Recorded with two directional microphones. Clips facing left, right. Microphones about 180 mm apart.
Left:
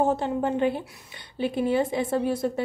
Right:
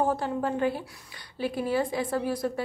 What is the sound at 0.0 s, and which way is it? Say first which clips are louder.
A woman's voice: left 3 dB; 25° left (ahead or behind).